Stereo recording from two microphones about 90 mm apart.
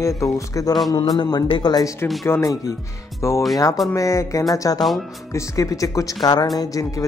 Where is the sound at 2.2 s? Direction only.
35° left (ahead or behind).